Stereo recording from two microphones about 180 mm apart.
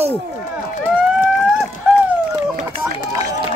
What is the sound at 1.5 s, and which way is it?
Run, 5° right (ahead or behind).